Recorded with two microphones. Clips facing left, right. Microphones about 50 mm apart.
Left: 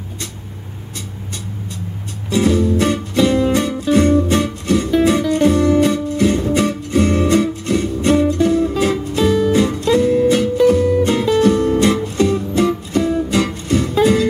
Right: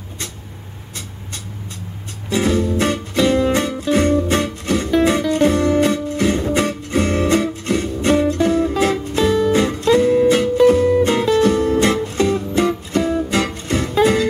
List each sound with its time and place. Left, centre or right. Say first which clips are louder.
2.2 s music: left 2 dB; centre
9.6 s music: even; centre